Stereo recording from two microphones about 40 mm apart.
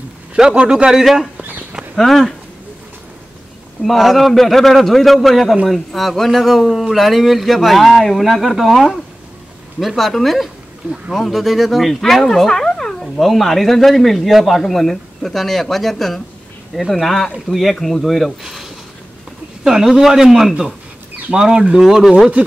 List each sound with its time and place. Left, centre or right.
0.6 s a man's voice: right
1.0 s speech: centre
3.8 s speech: centre
13.0 s speech: centre
21.3 s speech: centre
21.8 s speech: centre